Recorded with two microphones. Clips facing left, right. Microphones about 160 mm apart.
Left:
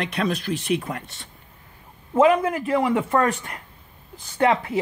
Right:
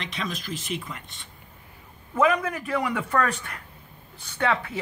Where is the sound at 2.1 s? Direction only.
25° left (ahead or behind).